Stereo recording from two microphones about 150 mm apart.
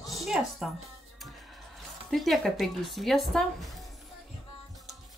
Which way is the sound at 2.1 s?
Centre (ahead or behind).